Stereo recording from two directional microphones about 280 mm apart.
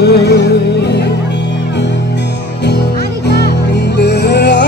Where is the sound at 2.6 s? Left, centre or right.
Left.